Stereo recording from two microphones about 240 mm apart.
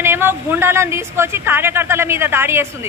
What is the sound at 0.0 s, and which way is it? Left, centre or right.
Speech, centre.